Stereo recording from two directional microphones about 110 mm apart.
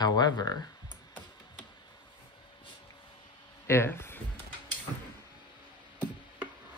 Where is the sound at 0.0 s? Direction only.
40° left (ahead or behind).